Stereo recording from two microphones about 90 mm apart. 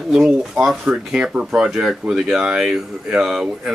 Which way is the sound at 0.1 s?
5° right (ahead or behind).